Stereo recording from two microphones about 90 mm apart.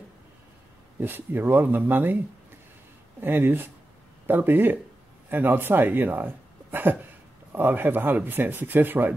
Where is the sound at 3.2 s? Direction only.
25° right (ahead or behind).